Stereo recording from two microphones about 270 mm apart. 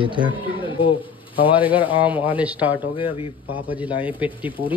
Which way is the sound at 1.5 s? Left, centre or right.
Centre.